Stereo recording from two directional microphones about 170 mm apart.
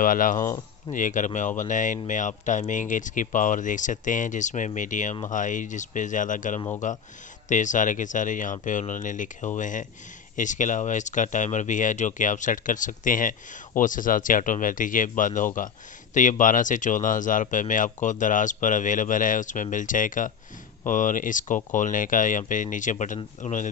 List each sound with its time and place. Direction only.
0.0 s speech: 50° left (ahead or behind)